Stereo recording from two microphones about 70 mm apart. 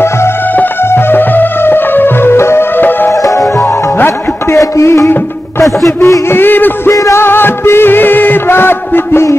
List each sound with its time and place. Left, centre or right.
0.6 s music: left
3.1 s music: left
3.6 s music: left
4.6 s music: left
6.9 s music: left
7.2 s music: left